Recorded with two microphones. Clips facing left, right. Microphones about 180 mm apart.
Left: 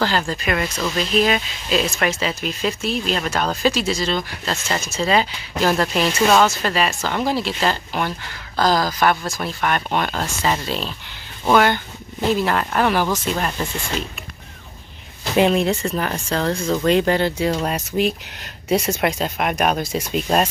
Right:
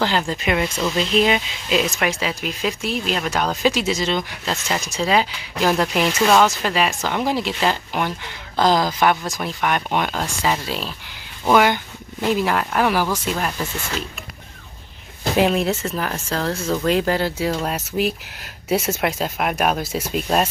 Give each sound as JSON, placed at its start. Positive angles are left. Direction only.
{"t": 0.3, "sound": "speech", "side_deg": -20}
{"t": 6.1, "sound": "speech", "side_deg": 0}
{"t": 6.5, "sound": "speech", "side_deg": -10}
{"t": 15.3, "sound": "speech", "side_deg": 0}